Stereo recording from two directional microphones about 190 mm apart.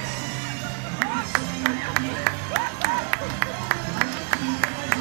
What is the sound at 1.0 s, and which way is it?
Music, 60° right (ahead or behind).